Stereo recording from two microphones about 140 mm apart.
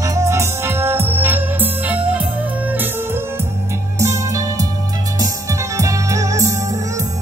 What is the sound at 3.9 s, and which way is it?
Music, 20° right (ahead or behind).